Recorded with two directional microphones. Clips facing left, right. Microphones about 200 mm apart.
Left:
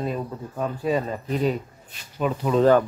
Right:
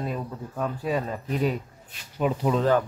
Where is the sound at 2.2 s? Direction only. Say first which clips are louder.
Even; 15° right (ahead or behind).